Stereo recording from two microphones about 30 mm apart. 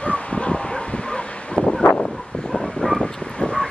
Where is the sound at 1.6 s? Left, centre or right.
Right.